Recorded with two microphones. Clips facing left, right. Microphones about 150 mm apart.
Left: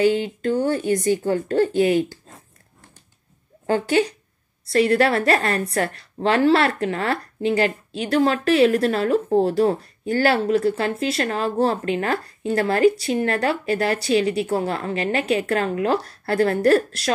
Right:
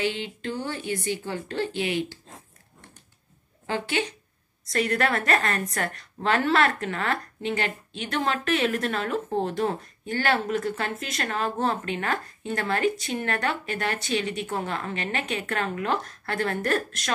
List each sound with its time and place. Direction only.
0.0 s speech: 40° left (ahead or behind)
3.6 s a woman's voice: 45° left (ahead or behind)